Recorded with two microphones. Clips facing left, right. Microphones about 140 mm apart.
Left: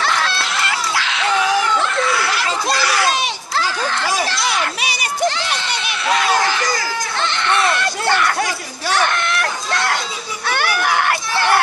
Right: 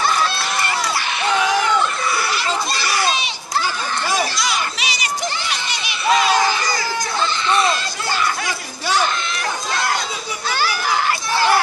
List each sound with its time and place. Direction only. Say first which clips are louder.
0.0 s goose: right 1 dB; 80° left
2.0 s baby cry: left 3 dB; 80° left
3.5 s children playing: left 1 dB; 85° left
4.3 s children playing: left 2 dB; 65° left (ahead or behind)
5.3 s a sound: left 3 dB; 80° left; by 9.9 s 65° left (ahead or behind)
10.4 s children playing: left 3 dB; 60° left (ahead or behind)